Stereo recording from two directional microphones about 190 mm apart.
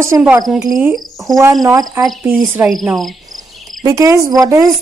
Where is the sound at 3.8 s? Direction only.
15° right (ahead or behind).